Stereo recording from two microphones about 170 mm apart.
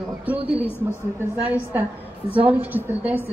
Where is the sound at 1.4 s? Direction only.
10° right (ahead or behind).